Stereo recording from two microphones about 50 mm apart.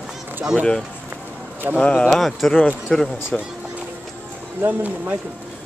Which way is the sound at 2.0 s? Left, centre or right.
Centre.